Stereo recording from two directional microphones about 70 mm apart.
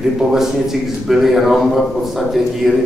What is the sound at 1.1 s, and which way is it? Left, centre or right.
Speech, centre.